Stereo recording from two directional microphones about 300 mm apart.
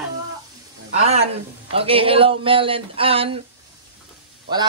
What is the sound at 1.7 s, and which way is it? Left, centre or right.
Speech, centre.